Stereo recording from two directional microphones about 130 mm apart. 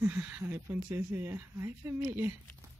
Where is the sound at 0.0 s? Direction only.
15° right (ahead or behind).